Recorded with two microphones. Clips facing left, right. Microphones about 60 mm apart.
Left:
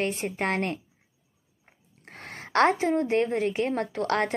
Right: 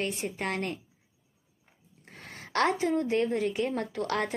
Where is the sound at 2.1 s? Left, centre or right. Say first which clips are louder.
Left 5 dB; left.